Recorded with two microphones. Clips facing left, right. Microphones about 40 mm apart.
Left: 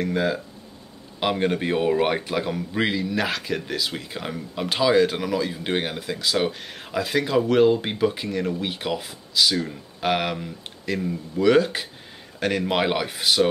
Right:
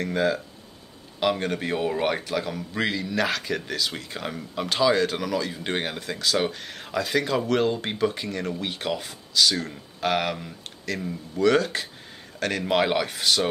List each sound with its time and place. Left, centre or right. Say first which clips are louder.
0.0 s speech: left 1 dB; centre
1.2 s a man's voice: left 2 dB; centre
3.0 s speech: left 1 dB; centre